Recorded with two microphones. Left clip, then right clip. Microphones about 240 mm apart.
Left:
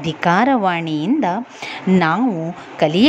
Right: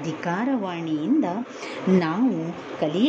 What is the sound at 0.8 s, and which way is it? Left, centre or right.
Speech, left.